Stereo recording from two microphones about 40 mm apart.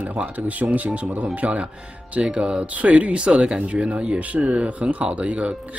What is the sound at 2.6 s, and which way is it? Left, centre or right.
Speech, right.